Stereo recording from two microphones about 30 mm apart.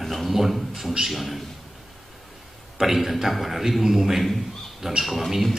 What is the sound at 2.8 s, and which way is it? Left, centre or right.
A man's voice, centre.